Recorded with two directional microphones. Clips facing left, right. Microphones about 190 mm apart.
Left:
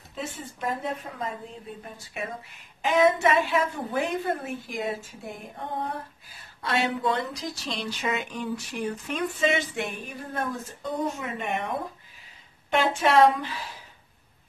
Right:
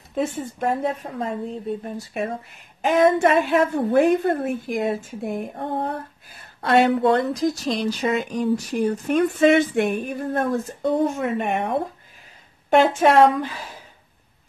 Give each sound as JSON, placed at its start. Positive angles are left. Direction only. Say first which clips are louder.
{"t": 0.1, "sound": "speech", "louder": "right 11 dB", "side_deg": -50}
{"t": 2.0, "sound": "speech", "louder": "right 9 dB", "side_deg": -35}
{"t": 2.8, "sound": "speech", "louder": "right 4 dB", "side_deg": -50}